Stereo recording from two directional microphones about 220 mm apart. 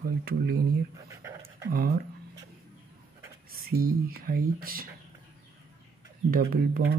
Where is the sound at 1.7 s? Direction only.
45° right (ahead or behind).